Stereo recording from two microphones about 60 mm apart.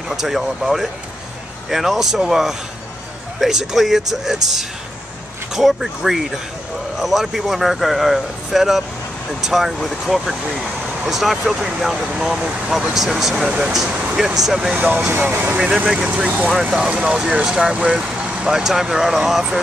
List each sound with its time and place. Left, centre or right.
0.1 s speech: centre
14.8 s speech: right
15.5 s speech: centre
18.5 s speech: centre